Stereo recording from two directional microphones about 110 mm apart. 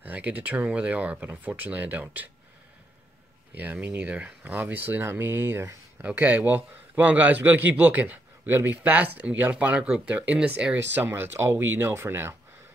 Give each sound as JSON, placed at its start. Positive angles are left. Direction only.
{"t": 0.0, "sound": "a man's voice", "side_deg": -15}
{"t": 3.5, "sound": "a man's voice", "side_deg": -15}